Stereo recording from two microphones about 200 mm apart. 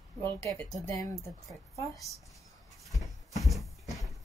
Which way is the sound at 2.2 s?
Centre (ahead or behind).